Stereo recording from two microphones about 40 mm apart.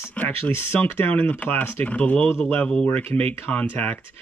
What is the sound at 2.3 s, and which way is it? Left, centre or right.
Speech, left.